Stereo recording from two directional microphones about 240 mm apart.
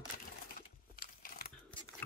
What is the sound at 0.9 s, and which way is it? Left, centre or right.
Crumpling, left.